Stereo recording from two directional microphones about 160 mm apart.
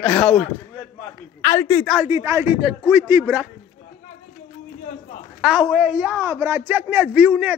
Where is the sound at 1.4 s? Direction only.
15° left (ahead or behind).